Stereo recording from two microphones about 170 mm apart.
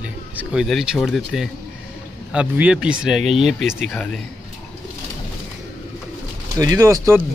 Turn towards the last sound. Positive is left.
turn(degrees=-15)  # may be behind; listen again after turning